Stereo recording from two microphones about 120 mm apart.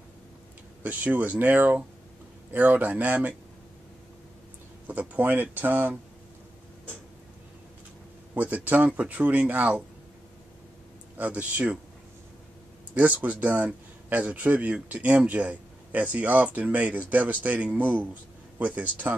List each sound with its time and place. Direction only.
0.8 s speech: 10° right (ahead or behind)
4.8 s speech: 15° right (ahead or behind)
8.4 s speech: 15° right (ahead or behind)
11.1 s speech: 10° right (ahead or behind)
12.9 s speech: 10° right (ahead or behind)